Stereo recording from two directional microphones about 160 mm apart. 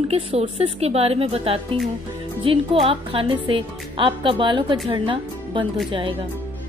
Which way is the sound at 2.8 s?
35° right (ahead or behind).